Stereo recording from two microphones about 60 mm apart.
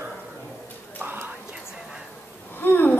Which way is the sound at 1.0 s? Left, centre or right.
Right.